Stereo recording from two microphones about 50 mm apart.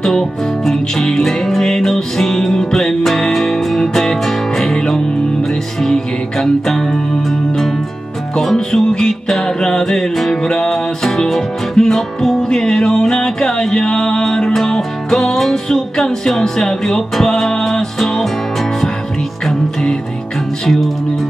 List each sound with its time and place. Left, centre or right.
0.0 s music: centre
19.4 s music: centre